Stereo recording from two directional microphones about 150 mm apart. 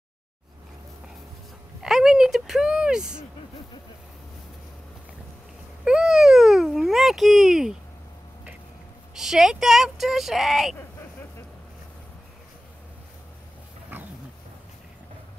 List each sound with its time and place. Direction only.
1.8 s speech: 5° right (ahead or behind)
5.9 s a sound: 5° right (ahead or behind)
9.1 s speech: centre (ahead or behind)
13.9 s roaring cats: 15° right (ahead or behind)